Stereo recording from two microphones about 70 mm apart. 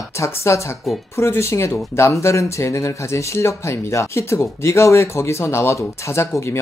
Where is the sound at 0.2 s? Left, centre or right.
Left.